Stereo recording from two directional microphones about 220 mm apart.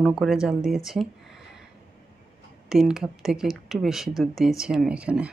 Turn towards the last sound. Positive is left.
turn(degrees=-5)  # may be behind; listen again after turning